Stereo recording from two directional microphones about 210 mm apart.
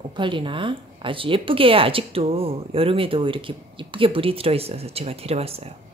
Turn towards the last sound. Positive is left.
turn(degrees=-30)  # may be behind; listen again after turning